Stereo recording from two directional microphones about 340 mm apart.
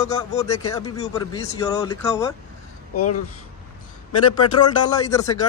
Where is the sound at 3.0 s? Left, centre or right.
Left.